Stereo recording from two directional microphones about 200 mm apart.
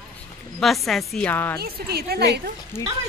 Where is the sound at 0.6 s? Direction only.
Centre (ahead or behind).